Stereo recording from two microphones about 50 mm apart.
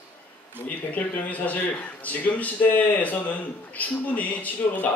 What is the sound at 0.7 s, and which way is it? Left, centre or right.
A man's voice, left.